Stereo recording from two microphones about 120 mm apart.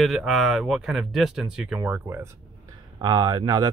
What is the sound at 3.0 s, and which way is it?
Speech, 35° right (ahead or behind).